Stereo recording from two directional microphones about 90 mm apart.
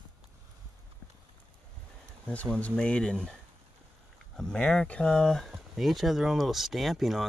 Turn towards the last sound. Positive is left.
turn(degrees=0)  # may be behind; listen again after turning